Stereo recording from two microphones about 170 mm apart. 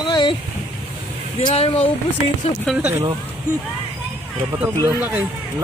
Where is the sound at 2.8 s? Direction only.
15° right (ahead or behind).